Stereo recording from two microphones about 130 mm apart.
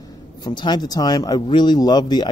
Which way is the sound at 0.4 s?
35° left (ahead or behind).